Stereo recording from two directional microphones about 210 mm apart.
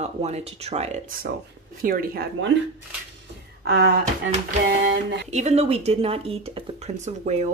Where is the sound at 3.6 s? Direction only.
50° right (ahead or behind).